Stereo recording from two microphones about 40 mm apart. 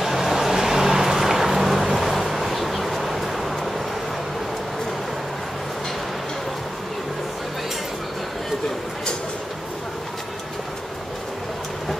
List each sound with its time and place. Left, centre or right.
0.0 s vehicle: centre